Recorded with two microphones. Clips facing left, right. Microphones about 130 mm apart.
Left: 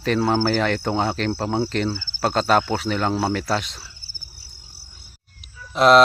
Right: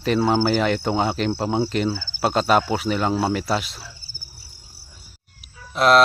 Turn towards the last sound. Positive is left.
turn(degrees=0)  # may be behind; listen again after turning